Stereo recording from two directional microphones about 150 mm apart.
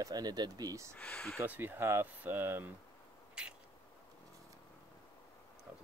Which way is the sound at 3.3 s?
5° right (ahead or behind).